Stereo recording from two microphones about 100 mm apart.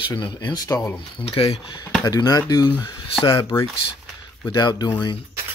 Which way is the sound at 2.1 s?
40° left (ahead or behind).